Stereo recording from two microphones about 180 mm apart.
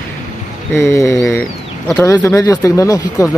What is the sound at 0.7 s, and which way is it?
Speech, 15° left (ahead or behind).